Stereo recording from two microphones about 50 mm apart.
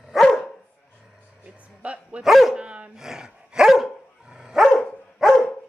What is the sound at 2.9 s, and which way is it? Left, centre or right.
Dog, centre.